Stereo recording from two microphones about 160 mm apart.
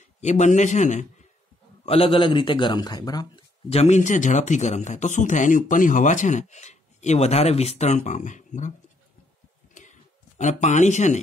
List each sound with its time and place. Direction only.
0.2 s a man's voice: 45° left (ahead or behind)
1.9 s a man's voice: 35° left (ahead or behind)
3.7 s a man's voice: 45° left (ahead or behind)
9.8 s a sound: 50° left (ahead or behind)